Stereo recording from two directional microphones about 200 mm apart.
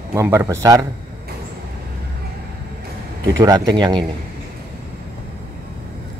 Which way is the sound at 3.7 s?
20° right (ahead or behind).